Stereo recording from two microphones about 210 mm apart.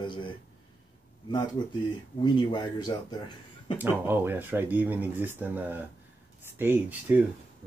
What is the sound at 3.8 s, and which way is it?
Speech, 10° right (ahead or behind).